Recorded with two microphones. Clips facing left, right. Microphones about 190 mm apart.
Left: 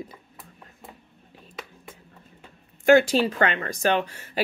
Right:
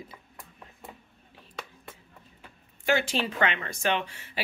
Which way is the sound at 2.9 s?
45° left (ahead or behind).